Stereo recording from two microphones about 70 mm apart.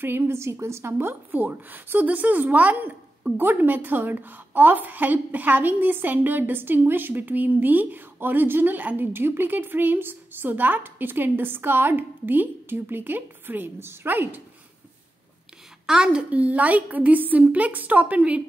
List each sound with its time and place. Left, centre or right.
0.0 s a woman's voice: right
0.9 s a woman's voice: right
15.9 s a woman's voice: centre